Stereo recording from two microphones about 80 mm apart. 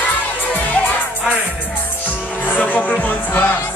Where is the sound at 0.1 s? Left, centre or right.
Left.